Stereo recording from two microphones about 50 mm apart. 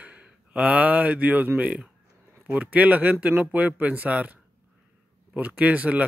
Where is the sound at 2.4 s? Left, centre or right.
Right.